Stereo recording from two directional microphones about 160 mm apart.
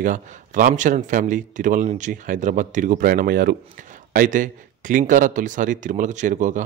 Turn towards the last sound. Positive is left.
turn(degrees=-50)  # may be behind; listen again after turning